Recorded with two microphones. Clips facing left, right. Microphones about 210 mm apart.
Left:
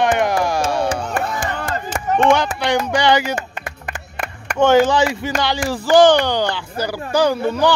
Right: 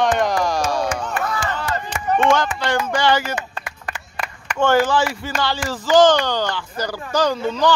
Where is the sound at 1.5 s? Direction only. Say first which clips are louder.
Left 1 dB; 50° left (ahead or behind).